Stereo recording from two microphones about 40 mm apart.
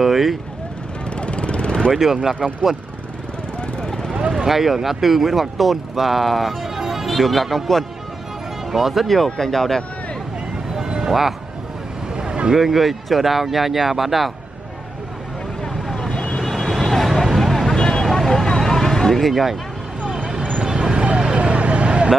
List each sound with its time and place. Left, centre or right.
0.0 s vehicle: centre
1.1 s vehicle: left
1.9 s speech: centre
4.5 s speech: centre
7.1 s speech: centre
10.8 s music: centre
12.2 s a sound: right
12.5 s speech: centre
15.6 s vehicle: centre
16.1 s vehicle: left
16.3 s vehicle: centre
17.7 s vehicle: centre
20.6 s vehicle: centre